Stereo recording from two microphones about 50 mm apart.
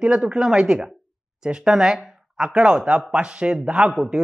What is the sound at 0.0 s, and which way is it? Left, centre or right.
A woman's voice, right.